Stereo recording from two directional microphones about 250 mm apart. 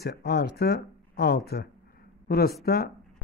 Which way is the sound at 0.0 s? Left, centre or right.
Left.